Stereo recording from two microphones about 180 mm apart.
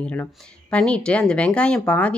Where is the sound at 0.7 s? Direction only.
5° left (ahead or behind).